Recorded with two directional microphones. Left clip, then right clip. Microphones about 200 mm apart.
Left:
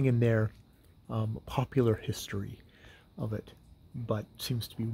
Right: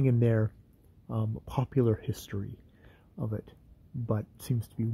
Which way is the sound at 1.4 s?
15° right (ahead or behind).